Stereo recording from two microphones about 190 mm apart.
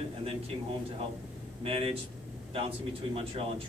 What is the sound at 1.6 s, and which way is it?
Speech, 30° right (ahead or behind).